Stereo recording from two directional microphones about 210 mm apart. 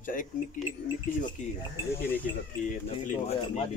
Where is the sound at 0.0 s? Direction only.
40° left (ahead or behind).